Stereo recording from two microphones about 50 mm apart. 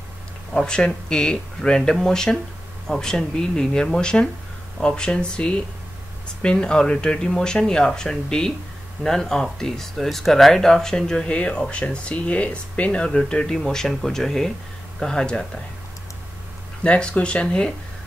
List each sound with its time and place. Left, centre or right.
0.5 s speech: centre
16.8 s speech: left